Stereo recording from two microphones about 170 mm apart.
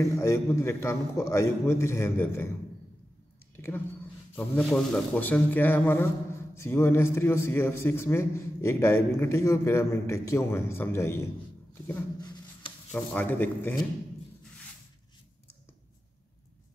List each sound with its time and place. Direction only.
0.1 s a man's voice: 15° left (ahead or behind)
3.5 s a man's voice: 15° left (ahead or behind)
12.2 s a sound: 25° left (ahead or behind)
12.9 s a man's voice: 10° left (ahead or behind)